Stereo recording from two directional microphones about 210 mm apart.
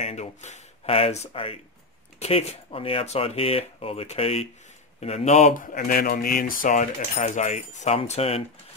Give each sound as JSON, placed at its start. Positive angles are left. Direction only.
{"t": 0.0, "sound": "speech", "side_deg": 35}